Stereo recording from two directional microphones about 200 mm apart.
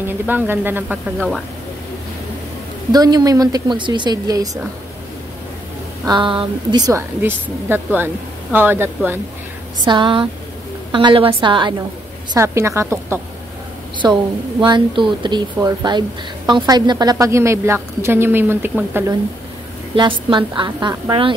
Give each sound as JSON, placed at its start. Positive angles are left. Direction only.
{"t": 0.0, "sound": "a woman's voice", "side_deg": -10}
{"t": 1.1, "sound": "speech", "side_deg": 5}
{"t": 2.9, "sound": "a woman's voice", "side_deg": -20}
{"t": 6.0, "sound": "a woman's voice", "side_deg": -25}
{"t": 9.8, "sound": "a woman's voice", "side_deg": -25}
{"t": 20.0, "sound": "a woman's voice", "side_deg": -25}